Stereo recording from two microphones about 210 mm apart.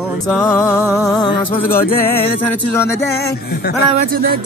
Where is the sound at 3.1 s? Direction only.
50° left (ahead or behind).